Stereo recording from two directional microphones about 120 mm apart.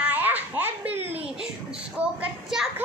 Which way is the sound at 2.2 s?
5° right (ahead or behind).